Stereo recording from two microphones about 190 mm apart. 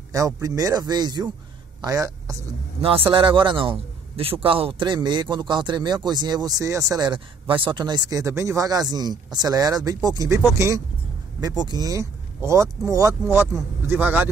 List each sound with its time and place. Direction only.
0.1 s a man's voice: 15° right (ahead or behind)
2.8 s a man's voice: 30° right (ahead or behind); by 14.2 s 10° right (ahead or behind)